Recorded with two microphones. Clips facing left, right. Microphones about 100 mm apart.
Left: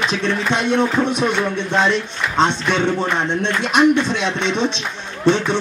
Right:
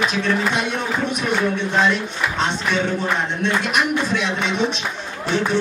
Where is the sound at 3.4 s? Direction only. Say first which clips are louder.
Left 7 dB; 30° left (ahead or behind).